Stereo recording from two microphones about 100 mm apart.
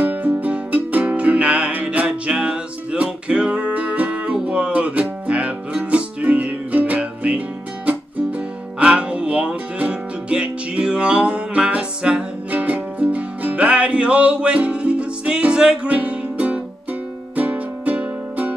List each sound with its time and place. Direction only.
0.0 s music: 15° right (ahead or behind)